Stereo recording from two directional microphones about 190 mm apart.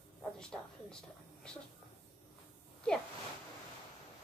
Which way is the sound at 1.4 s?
5° left (ahead or behind).